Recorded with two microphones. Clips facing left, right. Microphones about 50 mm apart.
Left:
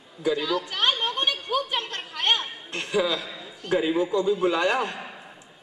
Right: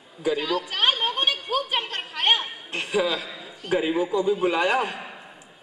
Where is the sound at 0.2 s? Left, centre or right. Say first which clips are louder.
Even; right.